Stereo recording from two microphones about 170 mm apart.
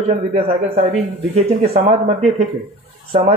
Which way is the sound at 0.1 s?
40° right (ahead or behind).